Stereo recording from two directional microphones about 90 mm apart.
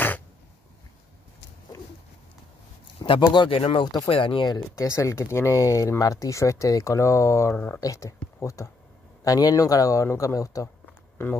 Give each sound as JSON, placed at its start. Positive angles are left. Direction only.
{"t": 3.1, "sound": "speech", "side_deg": 55}
{"t": 3.4, "sound": "speech", "side_deg": 85}
{"t": 4.1, "sound": "speech", "side_deg": 75}
{"t": 4.6, "sound": "speech", "side_deg": 35}
{"t": 7.5, "sound": "speech", "side_deg": 20}
{"t": 7.8, "sound": "speech", "side_deg": 35}